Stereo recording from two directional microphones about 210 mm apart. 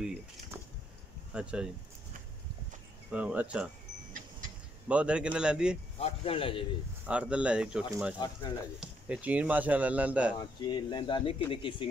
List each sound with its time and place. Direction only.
0.0 s a man's voice: 5° right (ahead or behind)
3.1 s a man's voice: 5° right (ahead or behind)
4.8 s a man's voice: 5° right (ahead or behind)
6.0 s speech: 25° left (ahead or behind)
7.1 s a man's voice: 5° right (ahead or behind)
8.2 s speech: 20° left (ahead or behind)
8.7 s speech: 5° right (ahead or behind)
10.6 s speech: 20° left (ahead or behind)